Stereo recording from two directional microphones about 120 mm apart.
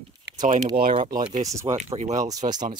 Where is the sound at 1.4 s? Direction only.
25° right (ahead or behind).